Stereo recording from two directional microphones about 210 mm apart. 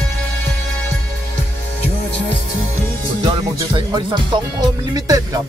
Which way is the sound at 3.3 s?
20° right (ahead or behind).